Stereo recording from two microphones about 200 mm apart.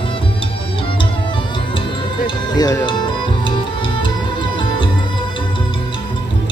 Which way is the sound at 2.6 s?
20° left (ahead or behind).